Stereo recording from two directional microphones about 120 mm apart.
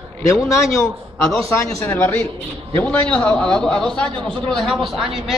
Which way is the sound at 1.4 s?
25° left (ahead or behind).